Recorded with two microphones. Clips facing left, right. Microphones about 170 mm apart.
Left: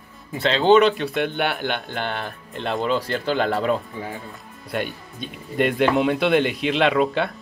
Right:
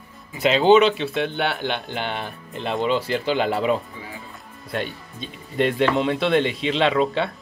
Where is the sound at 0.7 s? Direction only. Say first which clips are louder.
Left 1 dB; centre (ahead or behind).